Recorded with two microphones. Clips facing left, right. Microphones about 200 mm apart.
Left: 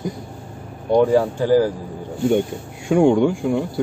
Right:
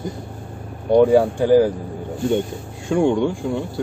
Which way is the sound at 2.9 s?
15° left (ahead or behind).